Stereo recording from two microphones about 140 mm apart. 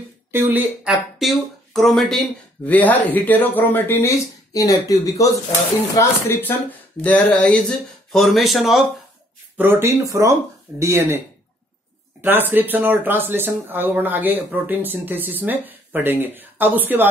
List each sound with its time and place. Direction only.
0.3 s speech: 15° right (ahead or behind)
1.2 s speech: centre (ahead or behind)
2.6 s speech: 10° left (ahead or behind)
9.6 s speech: 15° right (ahead or behind)
12.2 s speech: 15° right (ahead or behind)